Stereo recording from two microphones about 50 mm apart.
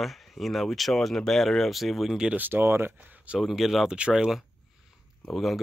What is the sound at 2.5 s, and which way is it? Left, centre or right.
Speech, right.